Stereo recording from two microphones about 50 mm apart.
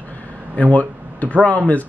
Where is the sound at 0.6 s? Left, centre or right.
Left.